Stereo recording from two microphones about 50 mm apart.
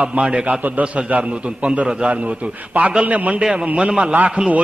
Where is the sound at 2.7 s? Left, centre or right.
Right.